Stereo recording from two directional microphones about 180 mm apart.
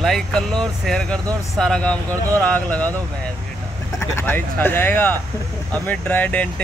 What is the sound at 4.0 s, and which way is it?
Speech, 15° left (ahead or behind).